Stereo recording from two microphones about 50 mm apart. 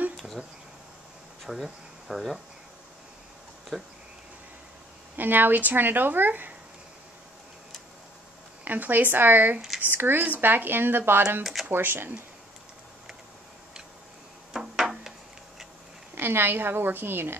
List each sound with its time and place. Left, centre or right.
1.4 s speech: centre
3.7 s speech: centre
5.1 s speech: right
8.6 s speech: right
14.5 s a sound: centre
16.2 s speech: right